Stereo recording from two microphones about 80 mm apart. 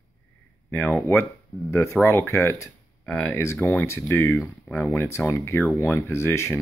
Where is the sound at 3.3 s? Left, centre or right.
Left.